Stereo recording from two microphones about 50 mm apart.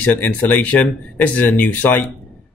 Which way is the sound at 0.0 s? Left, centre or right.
Left.